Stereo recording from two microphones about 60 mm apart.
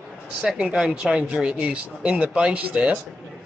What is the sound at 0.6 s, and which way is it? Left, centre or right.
Speech, centre.